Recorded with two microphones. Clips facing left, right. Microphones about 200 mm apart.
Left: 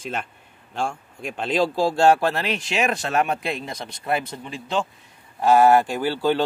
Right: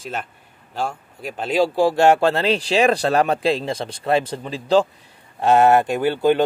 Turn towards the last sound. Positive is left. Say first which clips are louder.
# right 4 dB
turn(degrees=-20)  # may be behind; listen again after turning